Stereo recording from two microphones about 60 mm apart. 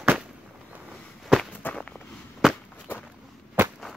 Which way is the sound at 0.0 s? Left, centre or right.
Centre.